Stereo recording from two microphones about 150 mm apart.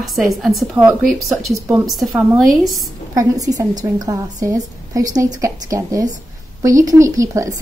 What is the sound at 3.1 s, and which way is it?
A woman's voice, 25° right (ahead or behind).